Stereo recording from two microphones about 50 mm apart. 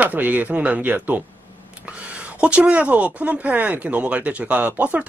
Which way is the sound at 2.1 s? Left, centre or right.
Right.